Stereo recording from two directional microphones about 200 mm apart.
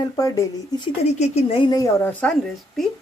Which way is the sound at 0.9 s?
35° left (ahead or behind).